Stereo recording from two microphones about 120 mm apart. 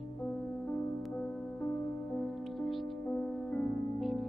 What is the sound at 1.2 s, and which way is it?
Music, 5° left (ahead or behind).